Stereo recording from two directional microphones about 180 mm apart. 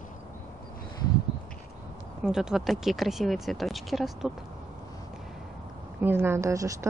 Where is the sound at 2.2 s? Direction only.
5° right (ahead or behind).